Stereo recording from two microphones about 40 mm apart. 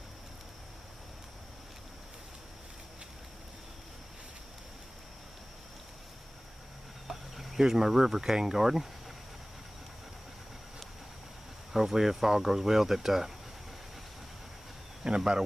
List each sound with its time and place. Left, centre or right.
7.1 s speech: centre
11.7 s speech: centre
15.0 s speech: centre